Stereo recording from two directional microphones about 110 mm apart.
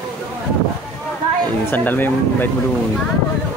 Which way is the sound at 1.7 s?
15° left (ahead or behind).